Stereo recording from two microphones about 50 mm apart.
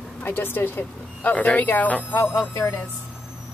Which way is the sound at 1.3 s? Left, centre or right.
Left.